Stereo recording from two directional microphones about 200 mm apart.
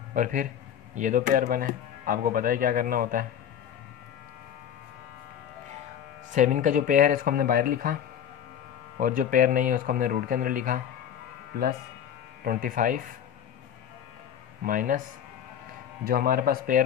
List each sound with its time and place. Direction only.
0.1 s a man's voice: 40° right (ahead or behind)
6.3 s speech: 40° right (ahead or behind)
9.0 s speech: 40° right (ahead or behind)
14.6 s speech: 40° right (ahead or behind)
16.0 s speech: 45° right (ahead or behind)